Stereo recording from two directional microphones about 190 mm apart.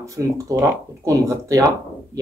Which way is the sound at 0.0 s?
15° right (ahead or behind).